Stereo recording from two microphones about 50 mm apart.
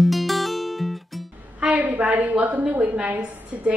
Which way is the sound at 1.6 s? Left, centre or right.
Right.